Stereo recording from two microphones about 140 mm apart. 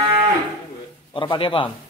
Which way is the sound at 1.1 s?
35° left (ahead or behind).